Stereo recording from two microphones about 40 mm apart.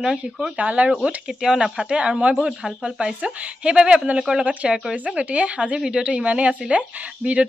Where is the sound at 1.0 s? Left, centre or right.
Centre; by 2.4 s right.